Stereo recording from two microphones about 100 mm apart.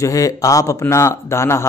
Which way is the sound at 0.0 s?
35° left (ahead or behind).